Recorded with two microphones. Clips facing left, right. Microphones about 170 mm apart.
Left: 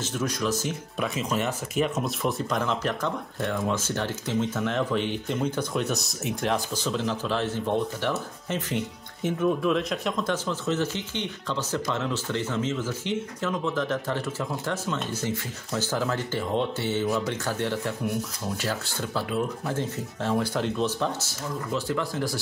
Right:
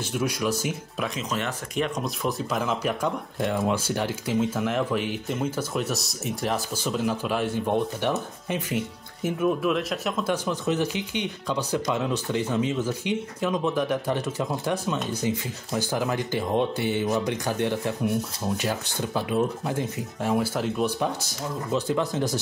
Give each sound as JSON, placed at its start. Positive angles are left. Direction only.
{"t": 0.0, "sound": "speech", "side_deg": -10}
{"t": 1.0, "sound": "speech", "side_deg": 5}